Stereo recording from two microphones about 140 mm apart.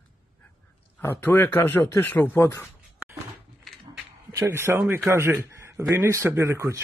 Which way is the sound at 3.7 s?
Centre (ahead or behind).